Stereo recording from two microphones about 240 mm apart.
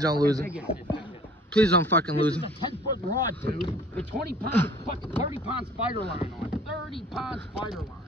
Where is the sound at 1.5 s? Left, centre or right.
Centre.